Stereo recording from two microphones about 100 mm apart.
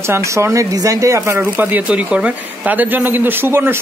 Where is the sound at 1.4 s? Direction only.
20° right (ahead or behind).